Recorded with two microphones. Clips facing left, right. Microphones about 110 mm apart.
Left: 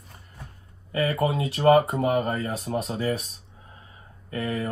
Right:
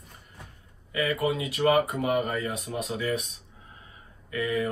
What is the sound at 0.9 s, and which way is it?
Speech, 30° left (ahead or behind).